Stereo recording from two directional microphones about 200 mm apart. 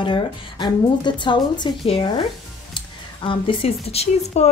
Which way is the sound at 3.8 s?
30° left (ahead or behind).